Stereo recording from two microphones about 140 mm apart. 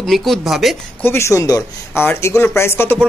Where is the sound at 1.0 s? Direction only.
20° left (ahead or behind).